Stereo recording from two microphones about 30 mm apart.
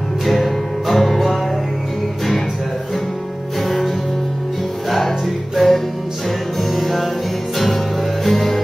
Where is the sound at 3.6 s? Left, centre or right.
Centre.